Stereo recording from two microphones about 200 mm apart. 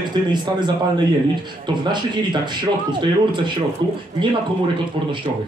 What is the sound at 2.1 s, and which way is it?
Speech, 20° right (ahead or behind).